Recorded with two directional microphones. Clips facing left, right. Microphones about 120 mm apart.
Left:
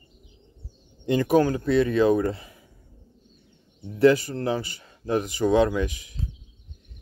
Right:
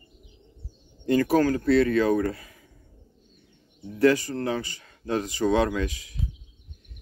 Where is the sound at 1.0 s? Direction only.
20° left (ahead or behind).